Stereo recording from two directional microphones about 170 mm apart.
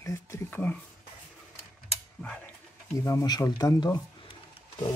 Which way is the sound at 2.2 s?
10° left (ahead or behind).